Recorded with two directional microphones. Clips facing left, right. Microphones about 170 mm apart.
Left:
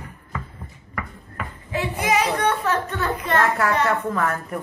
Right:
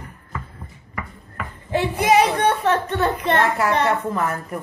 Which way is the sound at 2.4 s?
30° right (ahead or behind).